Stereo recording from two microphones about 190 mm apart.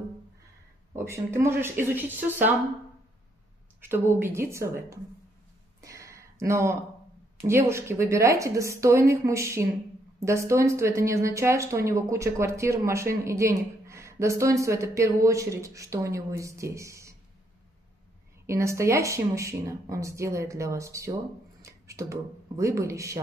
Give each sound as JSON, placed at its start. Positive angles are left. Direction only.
{"t": 0.9, "sound": "speech", "side_deg": -15}
{"t": 3.8, "sound": "speech", "side_deg": -10}
{"t": 5.8, "sound": "a sound", "side_deg": -15}
{"t": 7.4, "sound": "speech", "side_deg": -15}
{"t": 18.5, "sound": "speech", "side_deg": -15}